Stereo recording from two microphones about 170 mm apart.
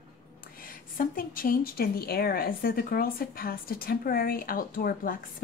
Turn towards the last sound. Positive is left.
turn(degrees=55)  # may be behind; listen again after turning